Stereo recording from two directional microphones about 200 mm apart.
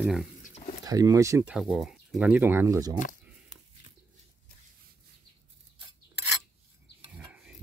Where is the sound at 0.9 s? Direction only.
15° right (ahead or behind).